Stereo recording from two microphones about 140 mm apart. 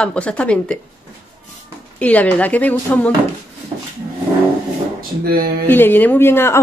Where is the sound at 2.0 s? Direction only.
10° left (ahead or behind).